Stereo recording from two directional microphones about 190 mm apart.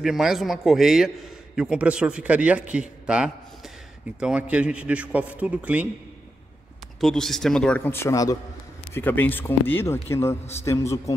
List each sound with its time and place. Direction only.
0.0 s a man's voice: centre (ahead or behind)
7.0 s a man's voice: centre (ahead or behind)